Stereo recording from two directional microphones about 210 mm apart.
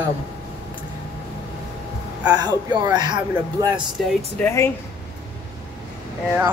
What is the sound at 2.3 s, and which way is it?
Speech, 20° right (ahead or behind).